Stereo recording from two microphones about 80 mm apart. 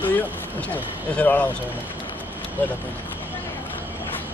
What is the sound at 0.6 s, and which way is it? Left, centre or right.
Speech, left.